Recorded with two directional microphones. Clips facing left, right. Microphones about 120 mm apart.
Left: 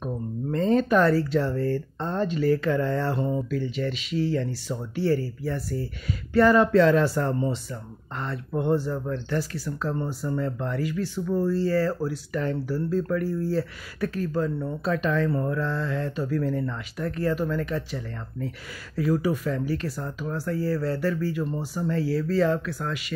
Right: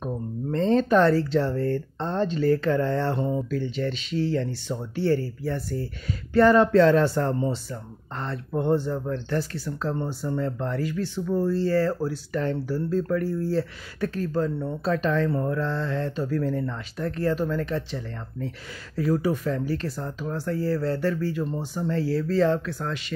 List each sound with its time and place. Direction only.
0.0 s a sound: 35° right (ahead or behind)
2.0 s speech: 30° right (ahead or behind)
3.4 s speech: 35° right (ahead or behind)
5.1 s speech: 50° right (ahead or behind)
6.0 s speech: 35° right (ahead or behind)